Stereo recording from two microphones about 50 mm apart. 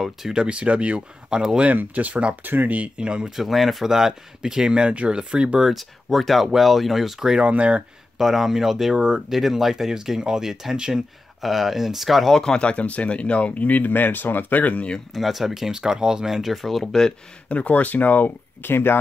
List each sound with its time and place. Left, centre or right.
0.0 s speech: centre
1.6 s speech: right
2.4 s speech: right
2.8 s speech: centre
3.3 s speech: centre
5.7 s speech: centre
7.4 s speech: right
8.2 s speech: centre
12.5 s speech: left
15.1 s speech: centre
16.5 s speech: centre
17.5 s speech: left